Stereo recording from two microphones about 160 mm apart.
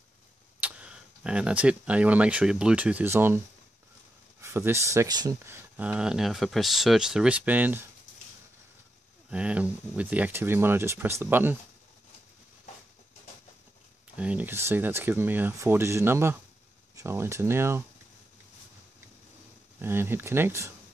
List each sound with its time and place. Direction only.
0.6 s speech: 10° right (ahead or behind)
9.3 s speech: 10° right (ahead or behind)
14.1 s speech: 10° right (ahead or behind)
19.8 s speech: 15° right (ahead or behind)